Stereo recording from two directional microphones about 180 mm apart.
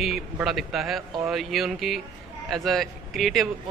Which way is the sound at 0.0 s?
Centre (ahead or behind).